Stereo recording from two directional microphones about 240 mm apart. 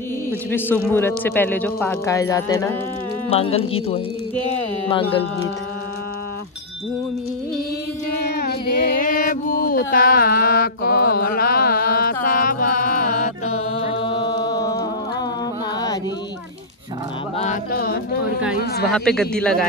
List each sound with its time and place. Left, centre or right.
0.5 s a man's voice: centre
3.3 s speech: left
8.2 s music: left
14.0 s music: centre
17.4 s a sound: left
18.6 s speech: left
18.9 s speech: centre